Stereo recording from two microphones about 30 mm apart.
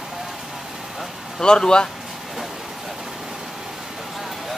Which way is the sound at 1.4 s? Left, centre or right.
Left.